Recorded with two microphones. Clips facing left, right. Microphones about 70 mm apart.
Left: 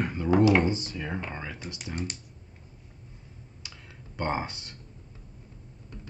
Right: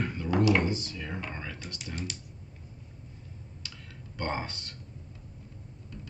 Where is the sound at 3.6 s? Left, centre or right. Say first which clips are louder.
Even; centre.